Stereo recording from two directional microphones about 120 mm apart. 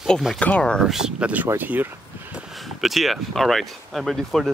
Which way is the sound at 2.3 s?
Centre (ahead or behind).